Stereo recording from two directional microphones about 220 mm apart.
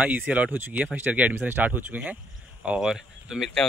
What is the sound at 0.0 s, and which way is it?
Speech, 5° right (ahead or behind).